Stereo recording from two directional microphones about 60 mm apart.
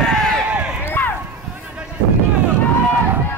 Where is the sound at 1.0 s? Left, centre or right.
Left.